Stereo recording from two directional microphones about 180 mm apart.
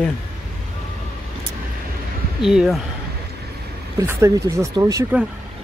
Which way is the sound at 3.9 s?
15° right (ahead or behind).